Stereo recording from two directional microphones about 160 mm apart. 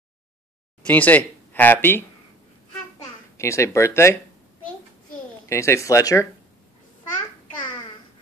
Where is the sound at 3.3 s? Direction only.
20° left (ahead or behind).